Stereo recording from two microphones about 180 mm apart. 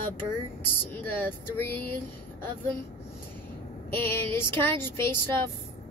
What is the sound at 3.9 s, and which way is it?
A woman's voice, 10° left (ahead or behind).